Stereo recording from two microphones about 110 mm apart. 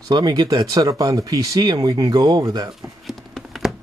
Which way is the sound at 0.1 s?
40° right (ahead or behind).